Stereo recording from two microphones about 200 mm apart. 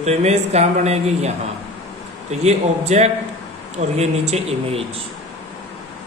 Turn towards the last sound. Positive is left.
turn(degrees=-30)  # may be behind; listen again after turning